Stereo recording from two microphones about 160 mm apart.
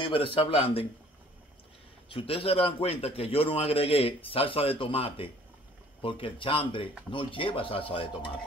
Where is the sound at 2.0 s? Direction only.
35° left (ahead or behind).